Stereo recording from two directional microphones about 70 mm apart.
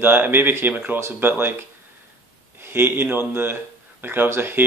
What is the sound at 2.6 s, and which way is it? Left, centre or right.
Speech, right.